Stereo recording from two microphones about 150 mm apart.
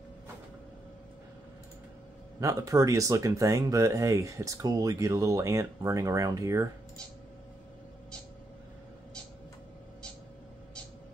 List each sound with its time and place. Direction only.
2.4 s speech: 20° right (ahead or behind)